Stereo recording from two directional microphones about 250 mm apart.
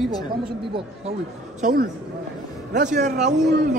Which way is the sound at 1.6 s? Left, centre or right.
Right.